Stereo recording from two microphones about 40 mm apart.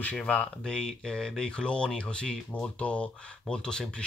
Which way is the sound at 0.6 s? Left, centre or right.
Centre.